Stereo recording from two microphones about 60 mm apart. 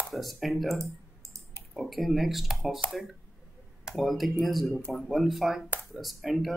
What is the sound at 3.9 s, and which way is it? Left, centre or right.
Speech, centre.